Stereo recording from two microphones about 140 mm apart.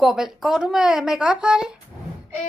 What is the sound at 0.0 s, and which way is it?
Speech, centre (ahead or behind).